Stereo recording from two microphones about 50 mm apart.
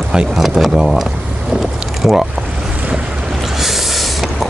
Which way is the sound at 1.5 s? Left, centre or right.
Centre.